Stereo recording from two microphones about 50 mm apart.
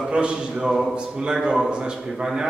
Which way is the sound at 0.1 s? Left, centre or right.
Centre.